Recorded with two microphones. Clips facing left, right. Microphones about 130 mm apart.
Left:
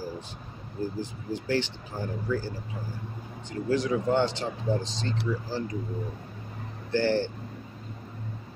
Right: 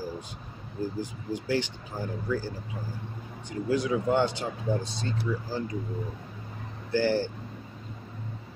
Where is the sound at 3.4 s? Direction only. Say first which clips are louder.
Even; 10° right (ahead or behind).